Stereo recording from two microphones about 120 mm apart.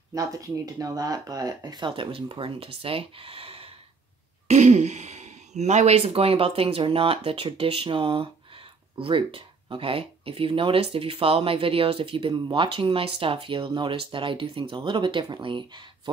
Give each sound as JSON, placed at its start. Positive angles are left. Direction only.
{"t": 0.1, "sound": "speech", "side_deg": -30}
{"t": 4.5, "sound": "speech", "side_deg": -75}